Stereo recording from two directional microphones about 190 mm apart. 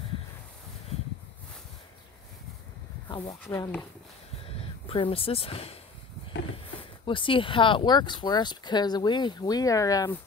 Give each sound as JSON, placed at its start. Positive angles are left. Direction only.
{"t": 3.1, "sound": "speech", "side_deg": 20}
{"t": 4.6, "sound": "speech", "side_deg": 30}
{"t": 7.1, "sound": "speech", "side_deg": 25}